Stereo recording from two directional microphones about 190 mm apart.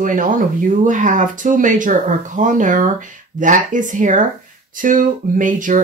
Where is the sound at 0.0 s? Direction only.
45° right (ahead or behind).